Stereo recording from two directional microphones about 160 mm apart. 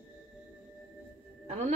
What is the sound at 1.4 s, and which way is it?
Music, 45° right (ahead or behind).